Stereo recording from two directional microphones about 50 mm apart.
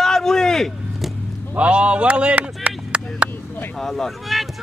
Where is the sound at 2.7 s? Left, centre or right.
Right.